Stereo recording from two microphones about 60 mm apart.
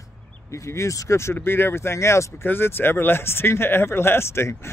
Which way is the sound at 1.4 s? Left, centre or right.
Left.